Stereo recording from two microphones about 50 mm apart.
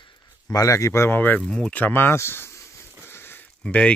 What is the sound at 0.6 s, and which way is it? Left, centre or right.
Speech, left.